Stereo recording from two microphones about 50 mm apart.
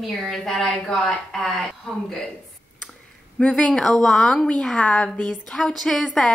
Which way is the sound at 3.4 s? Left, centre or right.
Centre.